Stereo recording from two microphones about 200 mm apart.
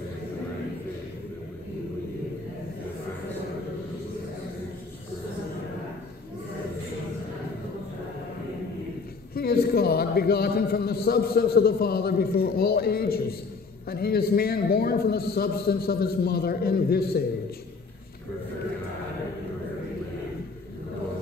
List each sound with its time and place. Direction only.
9.3 s a man's voice: 50° left (ahead or behind)